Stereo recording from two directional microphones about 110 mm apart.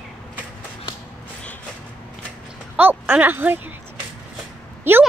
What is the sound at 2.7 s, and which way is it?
Speech, 15° right (ahead or behind).